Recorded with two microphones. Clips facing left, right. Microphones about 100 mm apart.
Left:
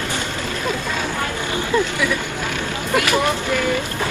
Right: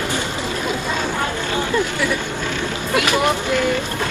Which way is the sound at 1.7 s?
20° left (ahead or behind).